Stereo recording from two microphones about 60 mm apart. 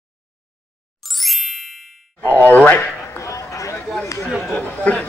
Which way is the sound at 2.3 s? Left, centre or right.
Left.